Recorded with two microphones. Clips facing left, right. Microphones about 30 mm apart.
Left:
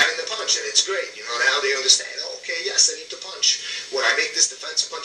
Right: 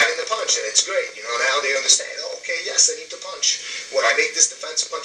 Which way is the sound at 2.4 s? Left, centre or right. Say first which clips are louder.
Right 1 dB; left.